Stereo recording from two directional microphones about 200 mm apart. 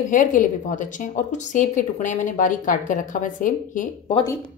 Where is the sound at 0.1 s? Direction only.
40° left (ahead or behind).